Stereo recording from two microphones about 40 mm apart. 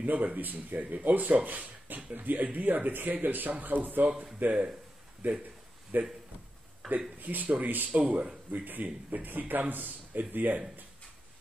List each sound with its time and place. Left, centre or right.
0.0 s speech: right
5.2 s speech: right
6.8 s speech: centre
7.2 s speech: right
8.5 s speech: right